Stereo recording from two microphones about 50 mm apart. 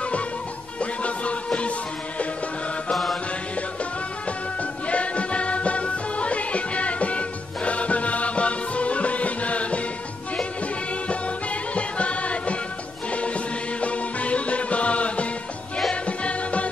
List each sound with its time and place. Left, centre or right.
0.7 s music: left
2.9 s mantra: centre
4.8 s music: left
11.7 s music: left